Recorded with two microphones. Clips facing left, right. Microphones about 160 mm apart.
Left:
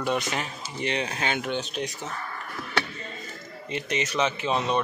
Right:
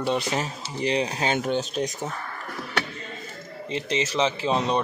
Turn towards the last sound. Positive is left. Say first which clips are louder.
# right 2 dB
turn(degrees=-30)  # may be behind; listen again after turning